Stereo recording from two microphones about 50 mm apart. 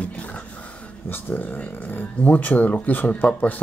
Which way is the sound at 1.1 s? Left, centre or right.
Left.